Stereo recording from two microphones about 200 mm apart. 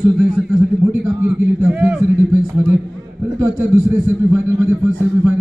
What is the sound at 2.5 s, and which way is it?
A man's voice, 15° right (ahead or behind).